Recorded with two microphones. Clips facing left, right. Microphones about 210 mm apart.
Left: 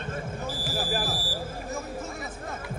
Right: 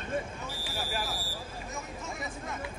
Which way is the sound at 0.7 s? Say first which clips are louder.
Left 5 dB; 35° left (ahead or behind).